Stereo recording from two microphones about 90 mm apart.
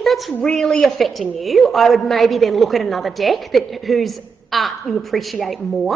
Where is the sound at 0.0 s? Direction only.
Centre (ahead or behind).